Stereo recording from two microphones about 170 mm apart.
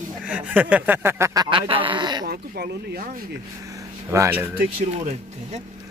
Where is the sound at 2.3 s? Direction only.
65° right (ahead or behind).